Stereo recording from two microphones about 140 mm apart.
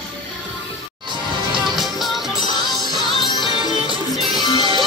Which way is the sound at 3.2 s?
30° left (ahead or behind).